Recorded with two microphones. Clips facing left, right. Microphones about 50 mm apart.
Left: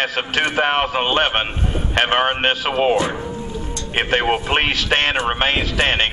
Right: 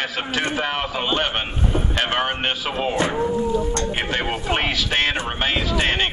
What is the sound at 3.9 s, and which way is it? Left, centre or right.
Speech, left.